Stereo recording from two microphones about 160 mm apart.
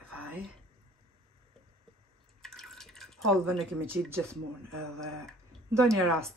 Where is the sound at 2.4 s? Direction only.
5° left (ahead or behind).